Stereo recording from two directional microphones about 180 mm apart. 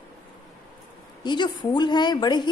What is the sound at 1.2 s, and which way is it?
A woman's voice, 25° left (ahead or behind).